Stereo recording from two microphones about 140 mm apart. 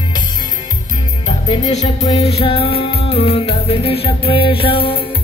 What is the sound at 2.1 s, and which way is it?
Music, 45° left (ahead or behind).